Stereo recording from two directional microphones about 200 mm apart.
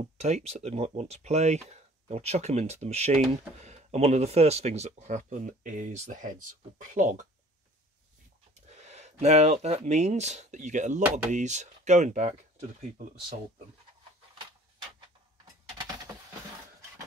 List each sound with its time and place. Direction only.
0.2 s speech: 35° right (ahead or behind)
8.6 s speech: 35° right (ahead or behind)